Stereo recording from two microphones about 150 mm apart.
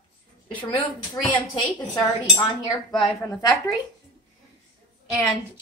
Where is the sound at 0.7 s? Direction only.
30° left (ahead or behind).